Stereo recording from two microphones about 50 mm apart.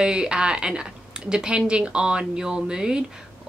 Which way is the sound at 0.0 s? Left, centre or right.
Centre.